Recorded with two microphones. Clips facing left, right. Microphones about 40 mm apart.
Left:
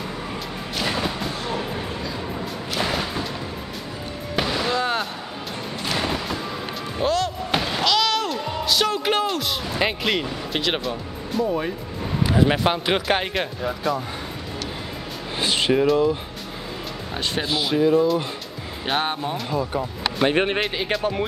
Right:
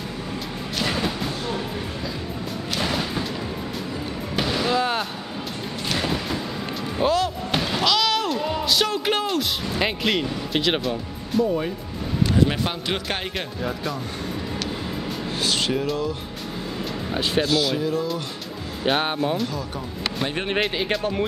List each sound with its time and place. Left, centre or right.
0.7 s thump: centre
2.7 s music: centre
4.4 s music: centre
7.5 s slam: centre
12.2 s a sound: centre
12.4 s speech: left
13.3 s speech: centre
15.4 s speech: left
17.1 s speech: centre
17.4 s speech: centre
18.9 s speech: centre
20.5 s speech: centre